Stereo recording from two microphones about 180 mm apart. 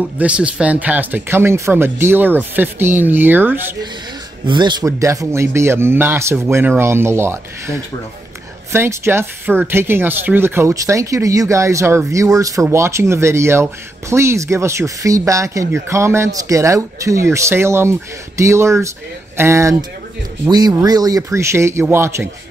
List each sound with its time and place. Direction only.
0.2 s speech: 5° right (ahead or behind)
4.5 s speech: 25° right (ahead or behind)